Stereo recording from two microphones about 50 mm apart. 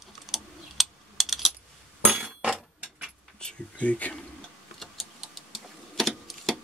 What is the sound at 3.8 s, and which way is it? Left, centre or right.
Speech, left.